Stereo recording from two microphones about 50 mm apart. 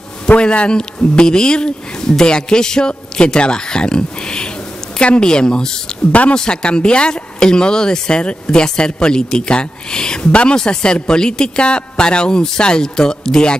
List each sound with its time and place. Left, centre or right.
0.3 s speech: left